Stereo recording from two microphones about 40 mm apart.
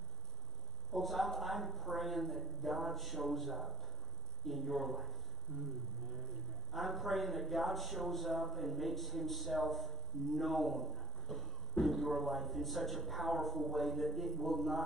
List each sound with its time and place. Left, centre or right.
0.9 s a man's voice: centre
5.5 s a sound: right
6.7 s a man's voice: centre